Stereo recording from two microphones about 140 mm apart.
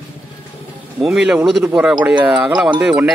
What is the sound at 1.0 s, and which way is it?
Speech, 5° right (ahead or behind).